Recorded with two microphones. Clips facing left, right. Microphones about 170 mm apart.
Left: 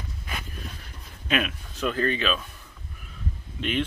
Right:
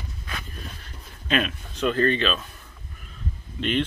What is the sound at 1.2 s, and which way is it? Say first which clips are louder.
Speech: right 2 dB; 10° left (ahead or behind).